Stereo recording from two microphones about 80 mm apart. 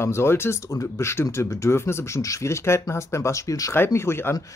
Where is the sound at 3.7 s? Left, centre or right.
Left.